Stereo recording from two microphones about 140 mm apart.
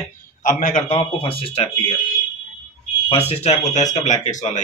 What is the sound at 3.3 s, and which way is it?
Speech, 50° left (ahead or behind).